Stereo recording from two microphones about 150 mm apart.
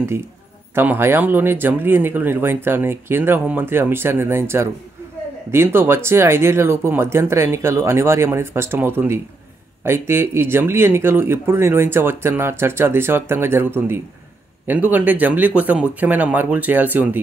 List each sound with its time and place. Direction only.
0.7 s speech: 15° right (ahead or behind)